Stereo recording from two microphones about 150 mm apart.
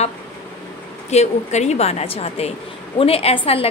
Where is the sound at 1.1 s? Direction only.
50° left (ahead or behind).